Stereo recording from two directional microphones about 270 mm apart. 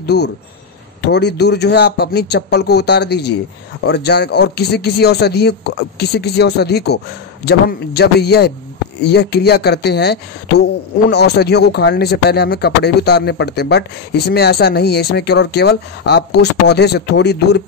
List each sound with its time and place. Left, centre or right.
0.0 s speech: left